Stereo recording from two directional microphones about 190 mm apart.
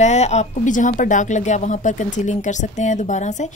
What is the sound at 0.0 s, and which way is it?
A woman's voice, 35° left (ahead or behind).